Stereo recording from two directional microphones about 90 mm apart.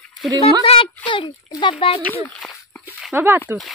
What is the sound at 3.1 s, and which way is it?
Speech, 25° right (ahead or behind).